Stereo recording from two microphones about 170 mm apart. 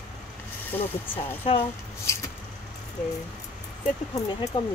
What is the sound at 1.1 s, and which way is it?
Speech, 35° left (ahead or behind).